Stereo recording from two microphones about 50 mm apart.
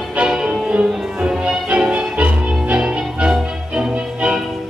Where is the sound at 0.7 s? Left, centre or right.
Right.